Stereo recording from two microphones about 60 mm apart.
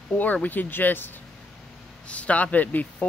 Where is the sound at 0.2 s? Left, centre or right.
Left.